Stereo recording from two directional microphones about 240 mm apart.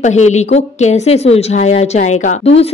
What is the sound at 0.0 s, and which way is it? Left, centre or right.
A woman's voice, left.